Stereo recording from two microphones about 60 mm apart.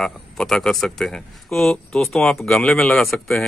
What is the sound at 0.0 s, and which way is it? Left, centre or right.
Speech, centre.